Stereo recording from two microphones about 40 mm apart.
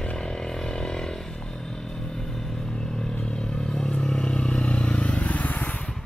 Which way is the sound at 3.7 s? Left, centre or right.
Left.